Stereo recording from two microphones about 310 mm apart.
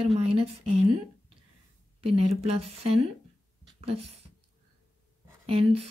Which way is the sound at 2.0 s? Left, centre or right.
Centre.